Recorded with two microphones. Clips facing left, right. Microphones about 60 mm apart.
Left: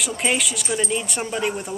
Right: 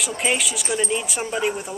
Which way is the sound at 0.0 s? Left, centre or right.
Centre.